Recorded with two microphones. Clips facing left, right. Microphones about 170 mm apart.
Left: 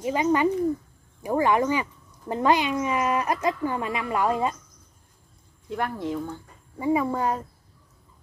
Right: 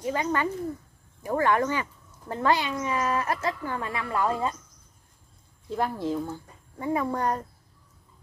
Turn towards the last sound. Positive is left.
turn(degrees=5)  # may be behind; listen again after turning